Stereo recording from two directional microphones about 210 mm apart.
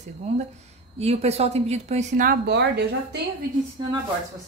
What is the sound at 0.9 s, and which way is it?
A woman's voice, 30° right (ahead or behind).